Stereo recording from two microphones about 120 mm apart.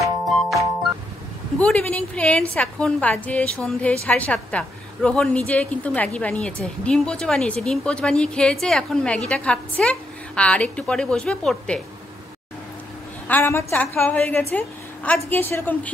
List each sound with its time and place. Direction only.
0.0 s music: centre (ahead or behind)
1.6 s a woman's voice: 10° left (ahead or behind)
13.3 s a woman's voice: 20° left (ahead or behind)